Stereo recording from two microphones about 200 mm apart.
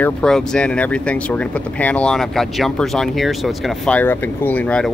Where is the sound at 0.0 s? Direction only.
5° left (ahead or behind).